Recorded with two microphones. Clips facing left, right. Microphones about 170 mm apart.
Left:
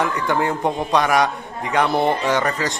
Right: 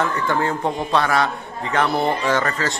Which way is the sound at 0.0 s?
15° left (ahead or behind).